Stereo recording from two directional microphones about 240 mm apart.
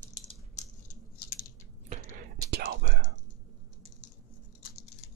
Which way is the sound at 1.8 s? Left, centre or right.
Right.